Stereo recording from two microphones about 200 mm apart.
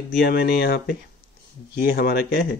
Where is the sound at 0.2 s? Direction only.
55° left (ahead or behind).